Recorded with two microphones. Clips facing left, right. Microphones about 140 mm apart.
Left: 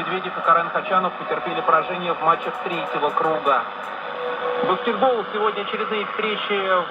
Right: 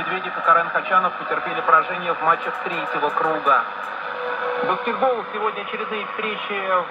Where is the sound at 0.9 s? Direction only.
40° left (ahead or behind).